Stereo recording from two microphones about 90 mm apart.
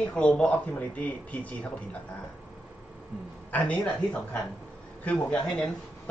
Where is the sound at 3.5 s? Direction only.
15° left (ahead or behind).